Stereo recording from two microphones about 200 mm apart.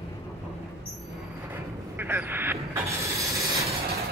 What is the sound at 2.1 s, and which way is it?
Vehicle, 10° right (ahead or behind).